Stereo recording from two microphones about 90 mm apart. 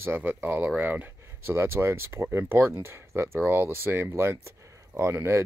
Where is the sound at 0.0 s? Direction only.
25° right (ahead or behind).